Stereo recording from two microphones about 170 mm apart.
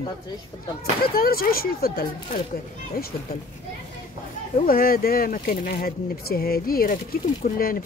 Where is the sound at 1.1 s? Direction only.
60° left (ahead or behind).